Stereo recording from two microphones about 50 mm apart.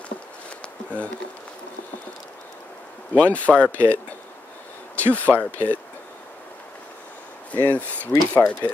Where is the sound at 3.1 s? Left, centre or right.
Left.